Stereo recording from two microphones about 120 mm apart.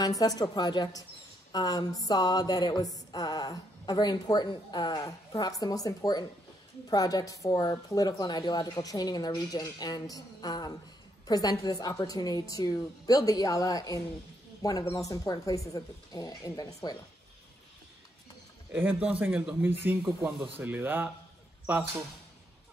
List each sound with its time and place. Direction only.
0.0 s speech: 30° left (ahead or behind)
18.7 s a man's voice: 15° right (ahead or behind)